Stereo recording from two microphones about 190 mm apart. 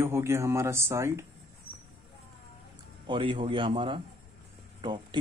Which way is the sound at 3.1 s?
25° right (ahead or behind).